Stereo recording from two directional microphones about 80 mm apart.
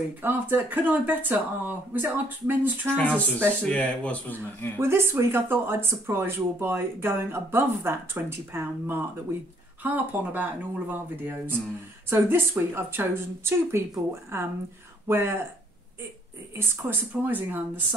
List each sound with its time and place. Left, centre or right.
0.2 s speech: right
3.0 s speech: centre
4.7 s speech: right
16.5 s speech: right